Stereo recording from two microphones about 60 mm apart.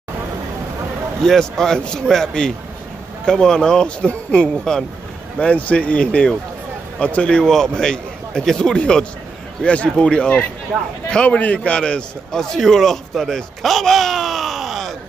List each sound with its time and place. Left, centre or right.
1.2 s a man's voice: centre